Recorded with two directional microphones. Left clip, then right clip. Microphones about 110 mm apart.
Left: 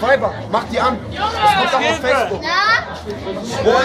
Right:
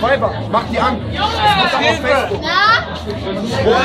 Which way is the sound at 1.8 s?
30° left (ahead or behind).